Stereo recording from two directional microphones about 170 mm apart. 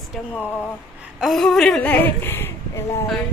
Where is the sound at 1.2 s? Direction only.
Centre (ahead or behind).